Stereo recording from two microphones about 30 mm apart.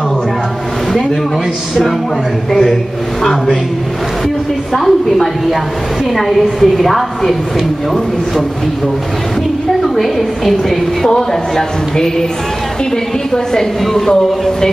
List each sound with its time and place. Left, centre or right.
2.5 s a woman's voice: centre
4.7 s a woman's voice: centre
9.9 s a woman's voice: centre
11.1 s a woman's voice: centre
13.3 s a woman's voice: centre